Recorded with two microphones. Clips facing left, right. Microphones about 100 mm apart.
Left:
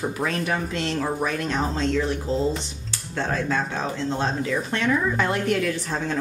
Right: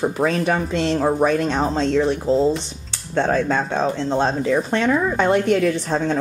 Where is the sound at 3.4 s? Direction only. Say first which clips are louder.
Right 5 dB; 30° right (ahead or behind).